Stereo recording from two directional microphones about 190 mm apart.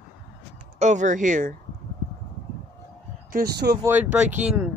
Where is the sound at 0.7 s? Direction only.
40° right (ahead or behind).